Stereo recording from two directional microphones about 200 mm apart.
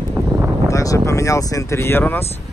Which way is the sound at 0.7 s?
15° left (ahead or behind).